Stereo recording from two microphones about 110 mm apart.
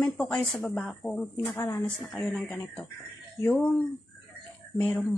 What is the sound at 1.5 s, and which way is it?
Speech, 25° left (ahead or behind).